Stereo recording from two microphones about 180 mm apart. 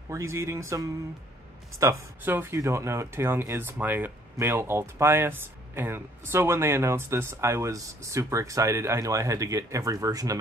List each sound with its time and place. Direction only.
0.1 s speech: 15° right (ahead or behind)
1.8 s speech: 15° right (ahead or behind)